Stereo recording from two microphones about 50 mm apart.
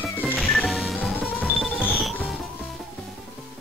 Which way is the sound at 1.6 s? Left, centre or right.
Left.